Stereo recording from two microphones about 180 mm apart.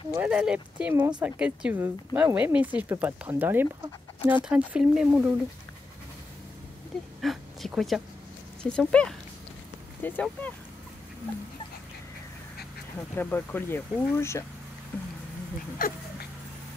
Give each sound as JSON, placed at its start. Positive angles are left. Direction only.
{"t": 0.1, "sound": "speech", "side_deg": -5}
{"t": 7.2, "sound": "speech", "side_deg": 0}
{"t": 13.1, "sound": "speech", "side_deg": 10}
{"t": 15.8, "sound": "dog", "side_deg": 50}